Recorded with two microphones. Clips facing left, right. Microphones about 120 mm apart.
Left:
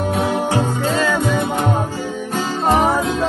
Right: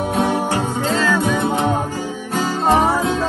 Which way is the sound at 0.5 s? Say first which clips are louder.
Left 1 dB; 15° left (ahead or behind).